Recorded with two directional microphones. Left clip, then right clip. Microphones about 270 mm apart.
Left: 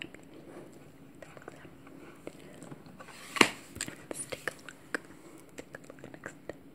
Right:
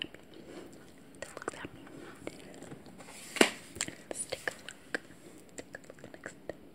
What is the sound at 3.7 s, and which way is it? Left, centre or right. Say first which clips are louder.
Whispering: right 1 dB; centre.